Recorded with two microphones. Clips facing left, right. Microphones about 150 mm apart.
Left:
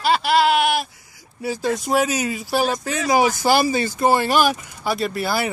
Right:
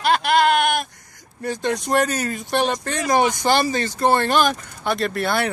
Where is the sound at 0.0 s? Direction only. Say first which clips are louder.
Even; 5° left (ahead or behind).